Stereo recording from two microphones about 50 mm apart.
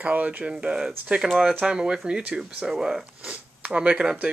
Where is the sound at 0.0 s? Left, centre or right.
Right.